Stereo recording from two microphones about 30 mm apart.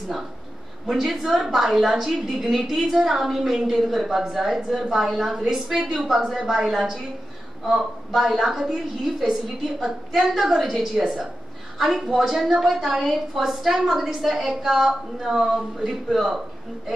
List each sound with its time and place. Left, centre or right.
0.8 s a woman's voice: centre
6.7 s a woman's voice: centre
7.7 s a woman's voice: centre